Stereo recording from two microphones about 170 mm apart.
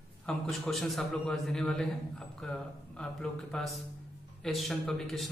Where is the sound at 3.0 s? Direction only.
5° left (ahead or behind).